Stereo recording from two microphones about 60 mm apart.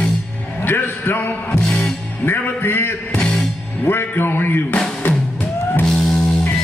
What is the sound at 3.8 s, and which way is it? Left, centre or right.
Speech, left.